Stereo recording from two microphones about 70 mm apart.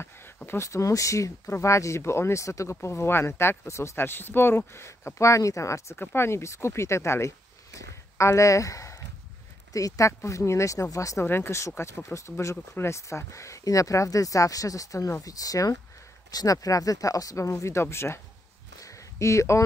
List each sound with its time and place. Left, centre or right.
0.5 s speech: left
5.9 s speech: left
11.2 s speech: left
18.8 s a sound: left